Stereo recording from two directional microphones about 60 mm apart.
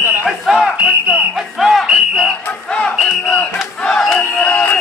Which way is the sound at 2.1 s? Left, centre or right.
Centre.